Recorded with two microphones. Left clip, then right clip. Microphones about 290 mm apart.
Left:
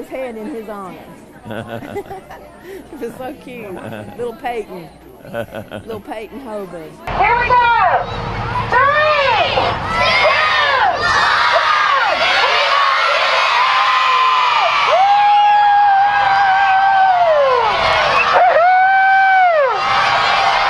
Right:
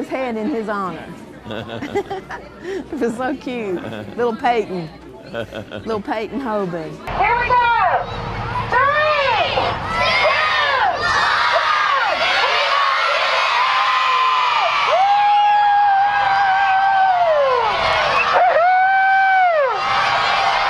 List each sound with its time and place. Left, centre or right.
0.1 s a woman's voice: right
3.0 s speech: right
5.9 s a woman's voice: right
7.1 s a sound: centre